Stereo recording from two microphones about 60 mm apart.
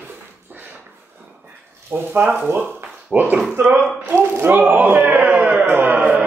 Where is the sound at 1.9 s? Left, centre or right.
Right.